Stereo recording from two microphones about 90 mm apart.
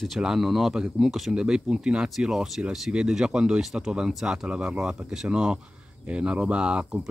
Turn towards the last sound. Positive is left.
turn(degrees=-10)  # may be behind; listen again after turning